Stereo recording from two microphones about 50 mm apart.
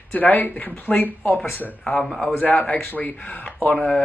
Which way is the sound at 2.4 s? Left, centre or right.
Left.